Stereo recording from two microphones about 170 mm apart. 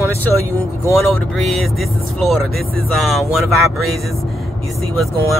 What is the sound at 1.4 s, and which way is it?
Speech, centre (ahead or behind).